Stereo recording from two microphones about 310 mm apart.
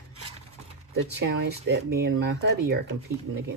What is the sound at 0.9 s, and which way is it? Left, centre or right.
Speech, right.